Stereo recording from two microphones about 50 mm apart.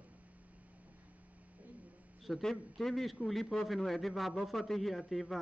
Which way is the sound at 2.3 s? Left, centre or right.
Centre.